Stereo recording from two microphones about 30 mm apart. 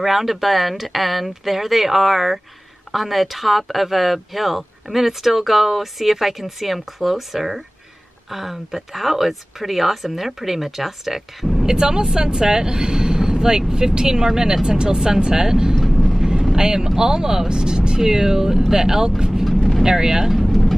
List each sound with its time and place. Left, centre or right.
0.0 s speech: centre
11.6 s speech: right
15.7 s vehicle: centre
16.2 s vehicle: centre
16.5 s speech: right
18.0 s speech: centre
19.5 s vehicle: centre
19.8 s speech: centre
20.2 s vehicle: centre